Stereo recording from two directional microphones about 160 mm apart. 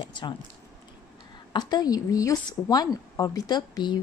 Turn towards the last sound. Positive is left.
turn(degrees=25)  # may be behind; listen again after turning